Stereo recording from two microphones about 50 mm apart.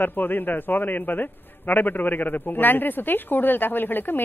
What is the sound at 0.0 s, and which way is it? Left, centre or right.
A man's voice, left.